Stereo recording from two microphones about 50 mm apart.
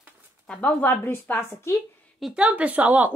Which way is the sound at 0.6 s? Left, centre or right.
Left.